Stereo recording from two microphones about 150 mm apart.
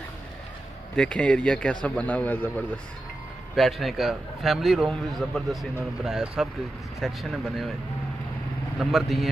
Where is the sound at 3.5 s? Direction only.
Centre (ahead or behind).